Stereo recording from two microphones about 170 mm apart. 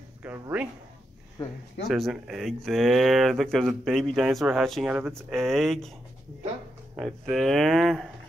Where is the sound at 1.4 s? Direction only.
25° left (ahead or behind).